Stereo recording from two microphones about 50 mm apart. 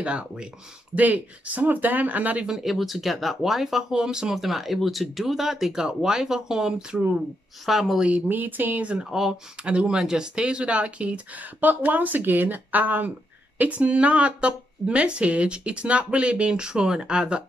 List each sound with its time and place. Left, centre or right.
0.0 s speech: right
0.9 s speech: right
2.4 s speech: centre
4.4 s speech: centre
8.3 s speech: right
9.1 s speech: centre